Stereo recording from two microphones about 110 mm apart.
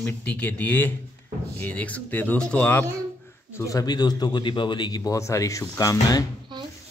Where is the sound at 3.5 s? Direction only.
30° left (ahead or behind).